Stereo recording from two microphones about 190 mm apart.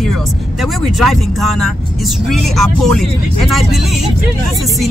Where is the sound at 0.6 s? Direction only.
Centre (ahead or behind).